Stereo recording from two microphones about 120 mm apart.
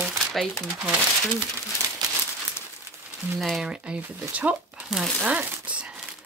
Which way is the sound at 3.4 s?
Centre (ahead or behind).